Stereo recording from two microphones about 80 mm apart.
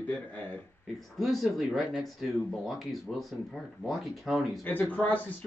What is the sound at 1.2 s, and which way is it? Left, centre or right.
Speech, centre.